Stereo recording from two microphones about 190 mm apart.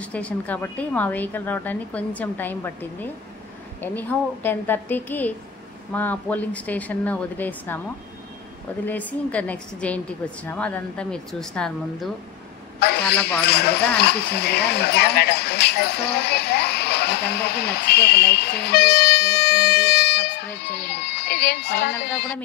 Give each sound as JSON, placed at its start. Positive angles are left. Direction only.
{"t": 0.0, "sound": "a woman's voice", "side_deg": 5}
{"t": 8.8, "sound": "a woman's voice", "side_deg": 10}
{"t": 13.4, "sound": "speech", "side_deg": 60}